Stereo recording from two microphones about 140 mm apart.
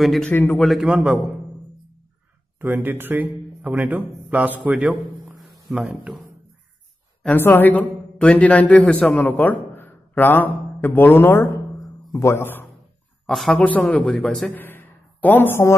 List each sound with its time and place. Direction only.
0.0 s speech: centre (ahead or behind)
0.3 s speech: 15° left (ahead or behind)
0.6 s speech: centre (ahead or behind)
2.6 s a man's voice: 15° right (ahead or behind)
7.2 s a man's voice: 15° left (ahead or behind)
13.3 s speech: 5° left (ahead or behind)
14.5 s a sound: 15° left (ahead or behind)